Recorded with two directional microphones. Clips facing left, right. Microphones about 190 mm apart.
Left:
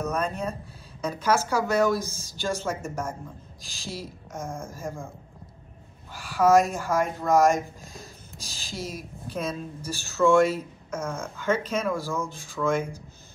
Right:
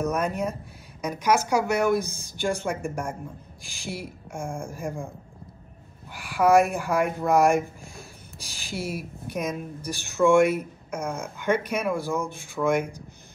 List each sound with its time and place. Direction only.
0.0 s a woman's voice: 15° right (ahead or behind)
6.1 s a woman's voice: 15° right (ahead or behind)
7.5 s speech: 20° left (ahead or behind)
8.4 s a sound: 15° right (ahead or behind)
9.3 s a woman's voice: 15° right (ahead or behind)